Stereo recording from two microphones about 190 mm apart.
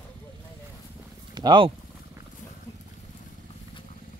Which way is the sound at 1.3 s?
25° right (ahead or behind).